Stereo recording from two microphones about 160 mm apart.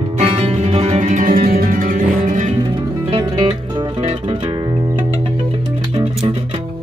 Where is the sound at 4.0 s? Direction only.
45° right (ahead or behind).